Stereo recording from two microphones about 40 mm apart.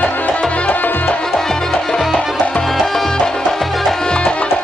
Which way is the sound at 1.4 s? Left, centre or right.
Centre.